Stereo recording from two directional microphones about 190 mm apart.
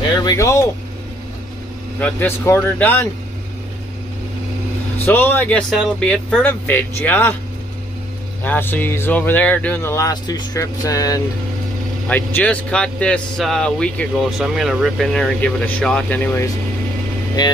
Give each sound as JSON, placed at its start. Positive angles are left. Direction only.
{"t": 0.2, "sound": "speech", "side_deg": 20}
{"t": 2.0, "sound": "speech", "side_deg": 10}
{"t": 4.9, "sound": "speech", "side_deg": 10}
{"t": 8.5, "sound": "speech", "side_deg": 10}
{"t": 17.4, "sound": "speech", "side_deg": 20}